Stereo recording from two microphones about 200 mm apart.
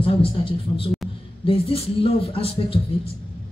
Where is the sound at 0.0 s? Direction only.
25° left (ahead or behind).